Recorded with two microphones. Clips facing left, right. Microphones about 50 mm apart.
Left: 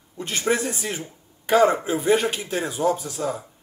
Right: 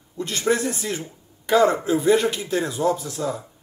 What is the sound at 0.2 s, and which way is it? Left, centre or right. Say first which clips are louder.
Speech: right 1 dB; left.